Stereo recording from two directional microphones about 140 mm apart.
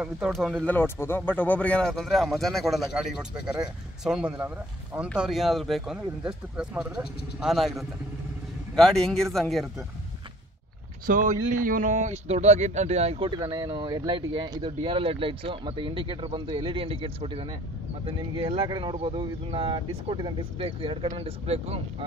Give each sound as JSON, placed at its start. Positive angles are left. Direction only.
{"t": 0.0, "sound": "speech", "side_deg": 0}
{"t": 11.1, "sound": "speech", "side_deg": -70}